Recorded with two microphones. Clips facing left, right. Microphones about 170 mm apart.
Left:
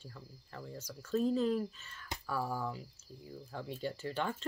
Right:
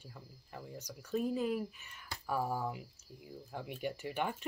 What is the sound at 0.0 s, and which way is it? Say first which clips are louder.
Speech: left 2 dB; 15° right (ahead or behind).